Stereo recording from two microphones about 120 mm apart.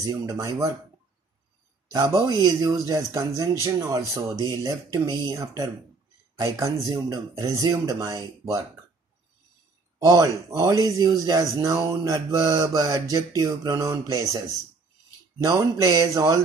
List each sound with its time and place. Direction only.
0.0 s speech: 30° right (ahead or behind)
1.9 s speech: 30° right (ahead or behind)
9.9 s speech: 30° right (ahead or behind)
15.8 s speech: 30° right (ahead or behind)